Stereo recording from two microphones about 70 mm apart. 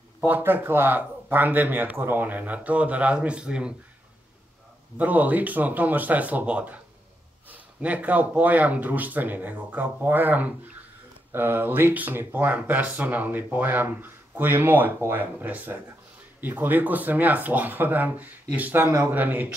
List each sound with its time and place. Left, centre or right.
0.2 s speech: right; by 3.7 s centre
4.9 s speech: right